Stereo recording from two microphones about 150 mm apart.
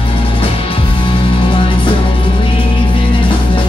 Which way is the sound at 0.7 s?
35° left (ahead or behind).